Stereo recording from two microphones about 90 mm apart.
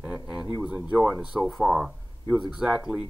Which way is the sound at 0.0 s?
10° right (ahead or behind).